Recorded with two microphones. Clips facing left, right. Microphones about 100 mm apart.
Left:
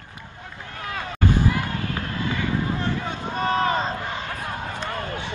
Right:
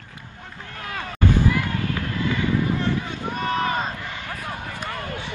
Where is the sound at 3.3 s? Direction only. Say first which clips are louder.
Left 2 dB; 20° left (ahead or behind).